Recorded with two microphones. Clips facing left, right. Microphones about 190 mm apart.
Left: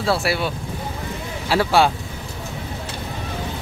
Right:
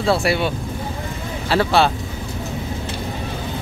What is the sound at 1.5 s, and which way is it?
Speech, 10° left (ahead or behind).